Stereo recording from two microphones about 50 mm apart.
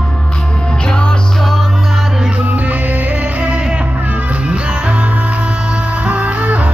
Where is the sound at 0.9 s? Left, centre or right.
Centre.